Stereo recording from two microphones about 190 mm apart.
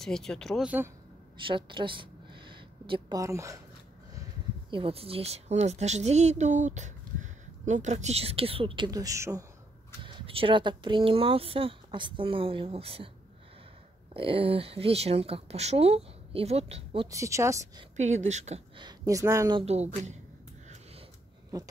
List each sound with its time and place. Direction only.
0.0 s speech: 5° left (ahead or behind)
1.5 s a woman's voice: 25° right (ahead or behind)
4.6 s a woman's voice: 30° right (ahead or behind)
10.0 s speech: 25° right (ahead or behind)
14.1 s a woman's voice: 30° right (ahead or behind)
17.1 s speech: 15° right (ahead or behind)
17.9 s a woman's voice: 40° right (ahead or behind)
18.8 s speech: 20° right (ahead or behind)
19.6 s a woman's voice: 35° right (ahead or behind)